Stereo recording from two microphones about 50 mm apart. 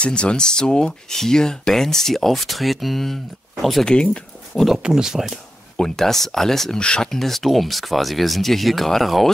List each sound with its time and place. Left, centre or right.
0.0 s speech: left; by 3.2 s centre
3.8 s speech: centre
4.8 s speech: centre
5.8 s speech: centre
6.8 s speech: centre
7.1 s speech: centre